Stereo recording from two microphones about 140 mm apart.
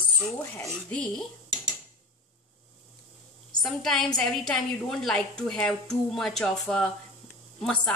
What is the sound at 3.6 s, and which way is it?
A woman's voice, centre (ahead or behind).